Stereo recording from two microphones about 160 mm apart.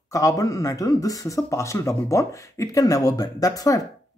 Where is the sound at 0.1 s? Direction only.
20° left (ahead or behind).